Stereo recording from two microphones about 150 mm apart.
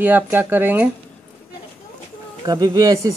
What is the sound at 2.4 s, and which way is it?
Speech, 30° right (ahead or behind).